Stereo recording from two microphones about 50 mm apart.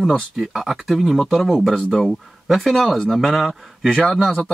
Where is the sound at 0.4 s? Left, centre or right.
Centre.